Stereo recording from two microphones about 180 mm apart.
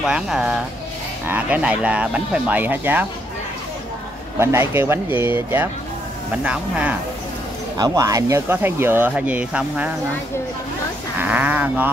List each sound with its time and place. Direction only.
0.0 s speech: 5° right (ahead or behind)
4.4 s speech: 15° right (ahead or behind)
7.7 s speech: 20° right (ahead or behind)
11.1 s speech: 10° right (ahead or behind)